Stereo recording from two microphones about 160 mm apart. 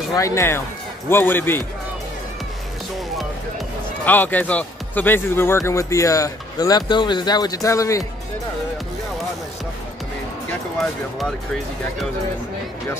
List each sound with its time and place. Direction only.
0.1 s a man's voice: 20° left (ahead or behind)
4.0 s speech: 10° left (ahead or behind)
10.8 s speech: centre (ahead or behind)